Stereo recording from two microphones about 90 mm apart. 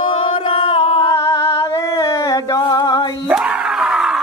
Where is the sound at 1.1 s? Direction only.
35° left (ahead or behind).